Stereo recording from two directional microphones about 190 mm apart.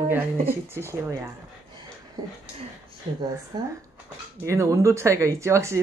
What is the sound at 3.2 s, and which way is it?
Speech, 20° right (ahead or behind).